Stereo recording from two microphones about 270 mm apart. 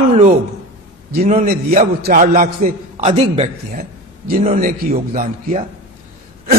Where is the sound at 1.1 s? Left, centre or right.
Right.